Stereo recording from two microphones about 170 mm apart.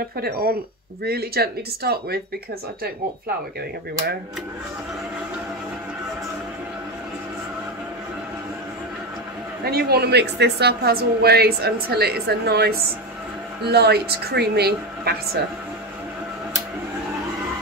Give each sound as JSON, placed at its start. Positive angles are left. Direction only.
{"t": 1.0, "sound": "a woman's voice", "side_deg": -65}
{"t": 9.7, "sound": "a woman's voice", "side_deg": -65}